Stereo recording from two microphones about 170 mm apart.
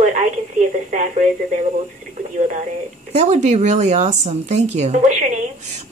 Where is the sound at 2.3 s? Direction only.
45° right (ahead or behind).